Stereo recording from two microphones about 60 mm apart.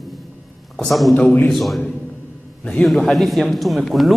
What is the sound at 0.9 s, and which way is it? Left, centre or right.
Speech, centre.